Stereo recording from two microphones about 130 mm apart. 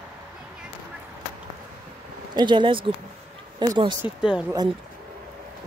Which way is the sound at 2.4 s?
35° right (ahead or behind).